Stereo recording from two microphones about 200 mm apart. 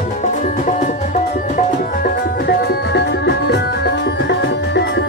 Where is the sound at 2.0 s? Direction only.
55° left (ahead or behind).